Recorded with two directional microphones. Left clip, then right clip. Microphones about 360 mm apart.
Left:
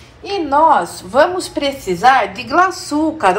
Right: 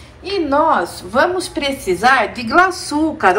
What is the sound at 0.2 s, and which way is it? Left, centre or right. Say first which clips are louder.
A woman's voice: left 2 dB; centre.